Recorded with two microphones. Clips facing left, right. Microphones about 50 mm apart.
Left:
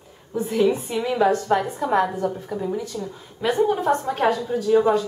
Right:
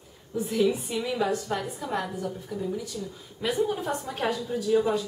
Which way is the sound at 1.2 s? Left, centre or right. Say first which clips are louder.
Left 9 dB; left.